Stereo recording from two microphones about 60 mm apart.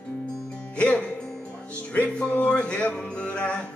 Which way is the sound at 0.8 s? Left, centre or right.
Left.